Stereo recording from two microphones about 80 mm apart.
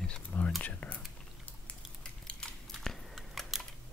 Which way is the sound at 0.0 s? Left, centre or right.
Centre.